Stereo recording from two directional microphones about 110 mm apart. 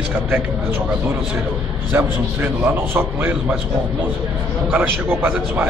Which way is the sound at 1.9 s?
15° right (ahead or behind).